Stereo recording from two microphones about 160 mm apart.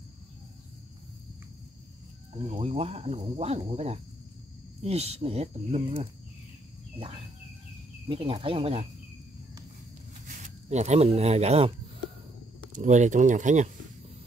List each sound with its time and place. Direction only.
2.3 s speech: 40° right (ahead or behind)
8.1 s speech: 35° right (ahead or behind)
10.2 s speech: 50° right (ahead or behind)
12.7 s speech: 50° right (ahead or behind)